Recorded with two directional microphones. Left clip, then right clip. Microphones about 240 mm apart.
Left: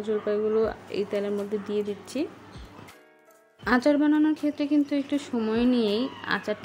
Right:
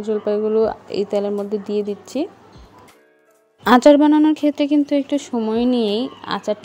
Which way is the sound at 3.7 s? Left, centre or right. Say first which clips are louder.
Right 11 dB; right.